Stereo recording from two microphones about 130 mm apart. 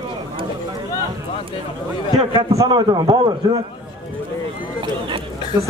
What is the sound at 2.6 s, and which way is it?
Speech, 30° right (ahead or behind).